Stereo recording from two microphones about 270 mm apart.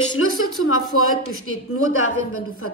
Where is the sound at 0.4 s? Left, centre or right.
Left.